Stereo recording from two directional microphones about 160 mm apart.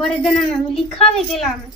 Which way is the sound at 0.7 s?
35° left (ahead or behind).